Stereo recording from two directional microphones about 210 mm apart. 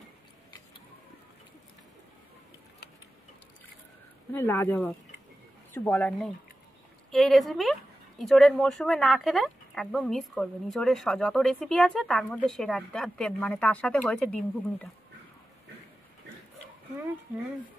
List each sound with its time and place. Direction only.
4.3 s speech: 10° left (ahead or behind)